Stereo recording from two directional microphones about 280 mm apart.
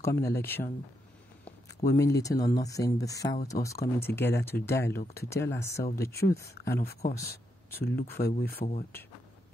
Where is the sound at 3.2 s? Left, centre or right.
Left.